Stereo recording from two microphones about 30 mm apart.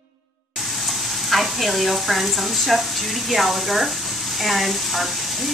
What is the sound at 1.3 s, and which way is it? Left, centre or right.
Speech, centre.